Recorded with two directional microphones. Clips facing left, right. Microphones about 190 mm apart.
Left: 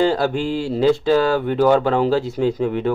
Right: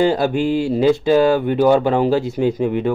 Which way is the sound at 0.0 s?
15° right (ahead or behind).